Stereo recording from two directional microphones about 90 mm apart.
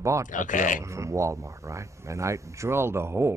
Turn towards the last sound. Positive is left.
turn(degrees=-30)  # may be behind; listen again after turning